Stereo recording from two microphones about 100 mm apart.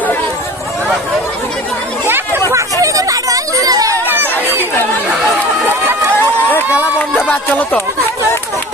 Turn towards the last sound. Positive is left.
turn(degrees=15)  # may be behind; listen again after turning